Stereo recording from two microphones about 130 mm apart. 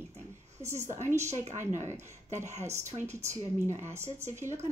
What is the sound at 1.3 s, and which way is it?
Speech, 65° right (ahead or behind).